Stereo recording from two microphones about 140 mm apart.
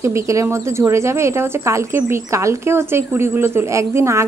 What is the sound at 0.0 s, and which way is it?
Speech, 20° right (ahead or behind).